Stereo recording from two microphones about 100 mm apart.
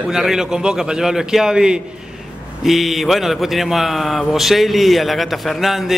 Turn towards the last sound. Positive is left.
turn(degrees=0)  # may be behind; listen again after turning